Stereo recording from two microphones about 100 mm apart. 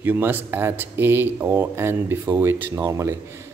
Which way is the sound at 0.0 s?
20° right (ahead or behind).